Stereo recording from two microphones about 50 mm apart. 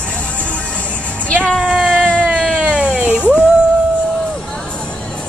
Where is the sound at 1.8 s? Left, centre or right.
Centre.